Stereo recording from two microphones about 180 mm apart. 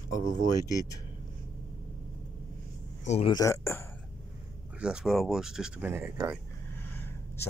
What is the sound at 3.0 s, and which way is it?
Speech, 35° left (ahead or behind).